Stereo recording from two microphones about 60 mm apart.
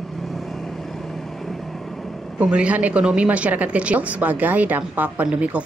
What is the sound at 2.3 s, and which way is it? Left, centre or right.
A woman's voice, centre.